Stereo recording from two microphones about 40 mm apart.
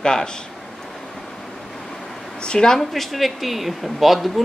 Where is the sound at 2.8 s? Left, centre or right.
Centre.